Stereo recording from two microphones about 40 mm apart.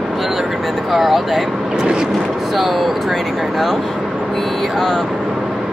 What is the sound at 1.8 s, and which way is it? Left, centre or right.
Vehicle, right.